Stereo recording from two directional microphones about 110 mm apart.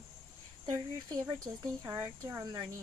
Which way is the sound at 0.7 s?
35° right (ahead or behind).